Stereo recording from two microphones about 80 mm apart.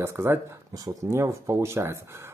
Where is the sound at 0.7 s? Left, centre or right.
Right.